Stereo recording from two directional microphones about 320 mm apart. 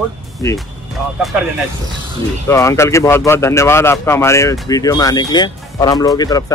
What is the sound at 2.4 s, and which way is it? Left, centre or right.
Speech, centre.